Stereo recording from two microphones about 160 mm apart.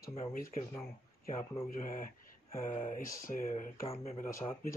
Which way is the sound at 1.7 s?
60° left (ahead or behind).